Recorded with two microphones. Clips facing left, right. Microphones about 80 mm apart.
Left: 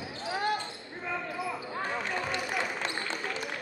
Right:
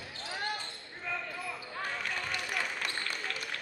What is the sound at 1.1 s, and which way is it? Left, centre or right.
Basketball bounce, centre.